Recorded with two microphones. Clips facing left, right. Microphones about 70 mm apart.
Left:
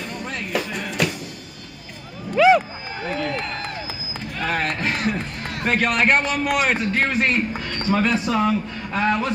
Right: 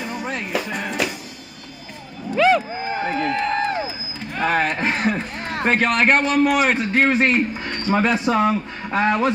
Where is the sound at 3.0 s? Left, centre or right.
Right.